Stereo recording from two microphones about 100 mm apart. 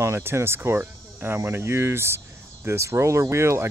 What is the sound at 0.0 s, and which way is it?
Speech, 25° right (ahead or behind).